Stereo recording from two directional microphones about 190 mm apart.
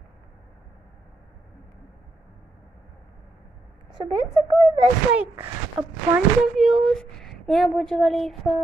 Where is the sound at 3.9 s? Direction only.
25° right (ahead or behind).